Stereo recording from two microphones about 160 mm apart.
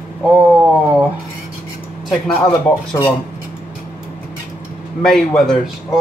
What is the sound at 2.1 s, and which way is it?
Speech, centre (ahead or behind).